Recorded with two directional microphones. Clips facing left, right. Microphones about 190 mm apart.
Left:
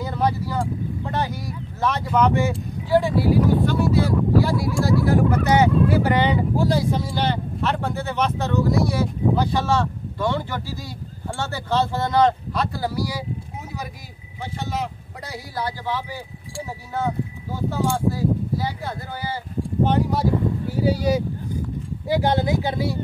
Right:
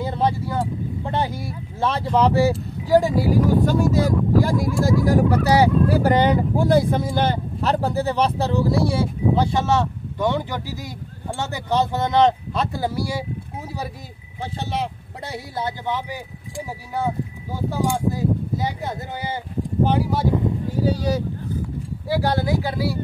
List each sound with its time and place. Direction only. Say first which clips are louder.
0.0 s speech: right 1 dB; 25° right (ahead or behind)
14.7 s speech: right 1 dB; 25° right (ahead or behind)
19.8 s speech: even; 10° right (ahead or behind)
20.8 s speech: left 2 dB; 10° left (ahead or behind)